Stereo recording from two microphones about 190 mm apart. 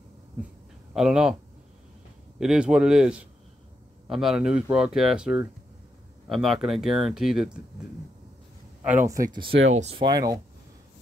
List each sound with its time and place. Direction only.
0.9 s speech: 5° right (ahead or behind)
2.4 s speech: 5° right (ahead or behind)
8.8 s speech: 10° right (ahead or behind)
9.7 s speech: 40° right (ahead or behind)
9.9 s speech: 20° right (ahead or behind)